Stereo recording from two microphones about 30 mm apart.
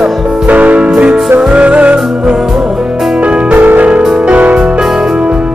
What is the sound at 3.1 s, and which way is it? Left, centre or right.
Music, right.